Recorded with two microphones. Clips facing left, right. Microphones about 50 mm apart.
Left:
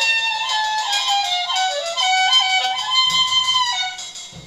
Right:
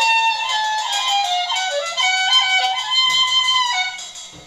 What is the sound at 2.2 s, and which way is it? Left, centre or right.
Music, centre.